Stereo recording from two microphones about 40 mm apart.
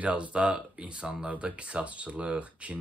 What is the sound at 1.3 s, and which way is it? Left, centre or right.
Speech, right.